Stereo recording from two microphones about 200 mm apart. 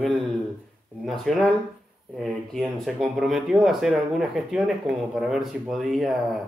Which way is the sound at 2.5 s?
Centre (ahead or behind).